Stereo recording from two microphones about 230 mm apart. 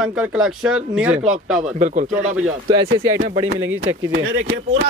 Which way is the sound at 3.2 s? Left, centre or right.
Right.